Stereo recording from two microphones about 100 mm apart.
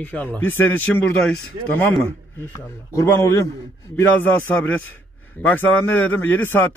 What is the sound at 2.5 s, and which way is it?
A man's voice, 30° left (ahead or behind).